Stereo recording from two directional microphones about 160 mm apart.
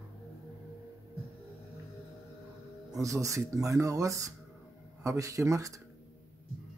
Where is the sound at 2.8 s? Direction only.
20° right (ahead or behind).